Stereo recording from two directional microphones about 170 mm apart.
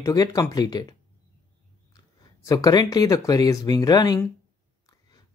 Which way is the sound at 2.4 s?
20° left (ahead or behind).